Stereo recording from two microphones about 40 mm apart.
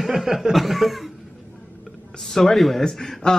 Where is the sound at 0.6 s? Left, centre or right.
Centre.